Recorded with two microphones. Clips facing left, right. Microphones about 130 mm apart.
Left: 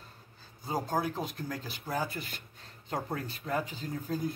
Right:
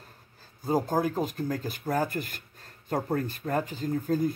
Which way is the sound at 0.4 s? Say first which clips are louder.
Right 7 dB; 45° right (ahead or behind).